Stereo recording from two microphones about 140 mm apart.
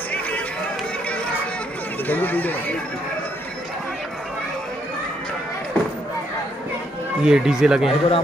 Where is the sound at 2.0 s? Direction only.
10° left (ahead or behind).